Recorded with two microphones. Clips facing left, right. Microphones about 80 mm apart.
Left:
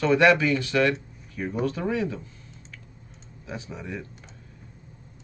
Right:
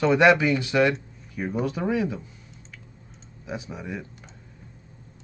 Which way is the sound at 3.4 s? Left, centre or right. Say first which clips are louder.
Right 2 dB; centre.